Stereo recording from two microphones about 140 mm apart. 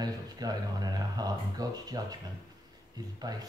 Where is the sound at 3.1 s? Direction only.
30° right (ahead or behind).